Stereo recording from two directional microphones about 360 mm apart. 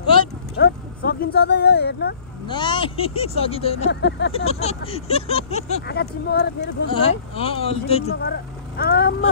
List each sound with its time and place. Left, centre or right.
0.6 s speech: left
2.4 s speech: centre
3.9 s speech: left
4.5 s speech: centre
6.9 s speech: centre
8.2 s speech: left